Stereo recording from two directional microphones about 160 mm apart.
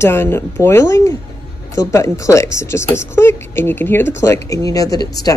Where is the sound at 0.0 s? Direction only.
15° left (ahead or behind).